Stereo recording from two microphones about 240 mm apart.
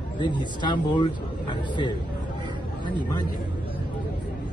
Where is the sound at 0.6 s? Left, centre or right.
Centre.